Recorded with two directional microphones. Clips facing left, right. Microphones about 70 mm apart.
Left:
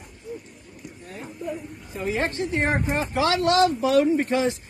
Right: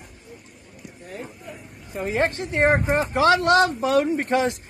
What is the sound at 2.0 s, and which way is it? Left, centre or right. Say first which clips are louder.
Speech: right 2 dB; right.